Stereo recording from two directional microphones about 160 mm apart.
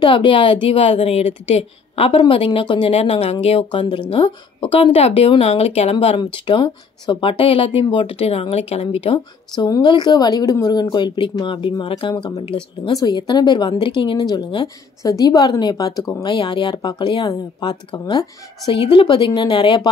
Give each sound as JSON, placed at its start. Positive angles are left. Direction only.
{"t": 0.0, "sound": "a woman's voice", "side_deg": 30}